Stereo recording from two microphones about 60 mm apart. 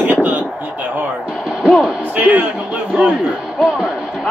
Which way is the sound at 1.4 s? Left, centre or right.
Centre.